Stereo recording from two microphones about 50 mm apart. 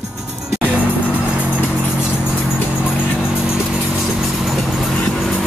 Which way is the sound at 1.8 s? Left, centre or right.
Left.